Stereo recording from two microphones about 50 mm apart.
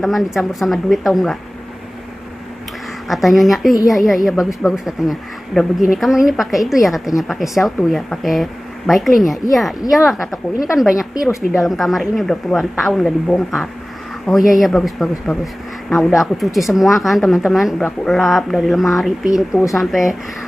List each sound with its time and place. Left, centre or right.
0.0 s a woman's voice: centre
3.1 s a woman's voice: centre
5.5 s a woman's voice: centre
14.3 s a woman's voice: centre
15.3 s speech: left
15.9 s a woman's voice: centre